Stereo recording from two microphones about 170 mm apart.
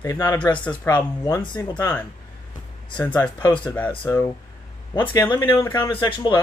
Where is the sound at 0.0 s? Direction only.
15° left (ahead or behind).